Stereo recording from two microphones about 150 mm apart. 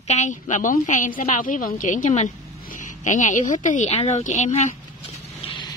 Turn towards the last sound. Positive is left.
turn(degrees=35)  # may be behind; listen again after turning